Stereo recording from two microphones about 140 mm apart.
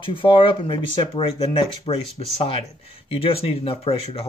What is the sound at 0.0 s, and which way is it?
Speech, 35° left (ahead or behind).